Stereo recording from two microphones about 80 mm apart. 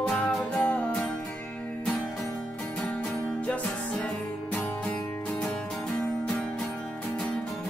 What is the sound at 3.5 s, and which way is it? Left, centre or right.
Music, centre.